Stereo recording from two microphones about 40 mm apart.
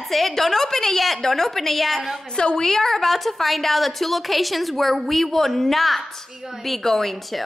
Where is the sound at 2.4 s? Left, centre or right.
Centre.